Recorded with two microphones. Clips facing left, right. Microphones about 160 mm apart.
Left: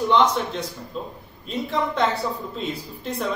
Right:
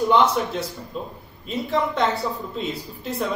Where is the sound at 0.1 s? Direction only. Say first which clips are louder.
Left 1 dB; 5° right (ahead or behind).